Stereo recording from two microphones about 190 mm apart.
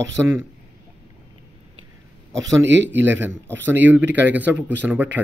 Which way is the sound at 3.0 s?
10° right (ahead or behind).